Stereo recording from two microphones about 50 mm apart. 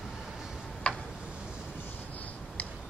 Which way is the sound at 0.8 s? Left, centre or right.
Left.